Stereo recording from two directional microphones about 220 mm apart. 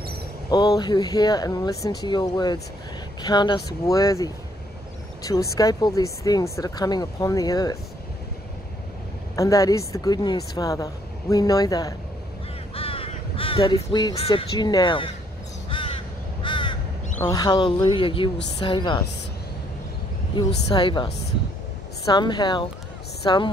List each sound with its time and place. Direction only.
0.5 s speech: 20° left (ahead or behind)
9.3 s speech: 15° left (ahead or behind)
15.7 s crow: 25° left (ahead or behind)
17.2 s speech: 15° left (ahead or behind)
20.3 s speech: 20° left (ahead or behind)